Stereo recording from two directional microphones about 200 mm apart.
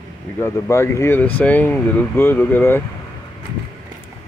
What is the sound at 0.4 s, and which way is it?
Speech, 15° left (ahead or behind).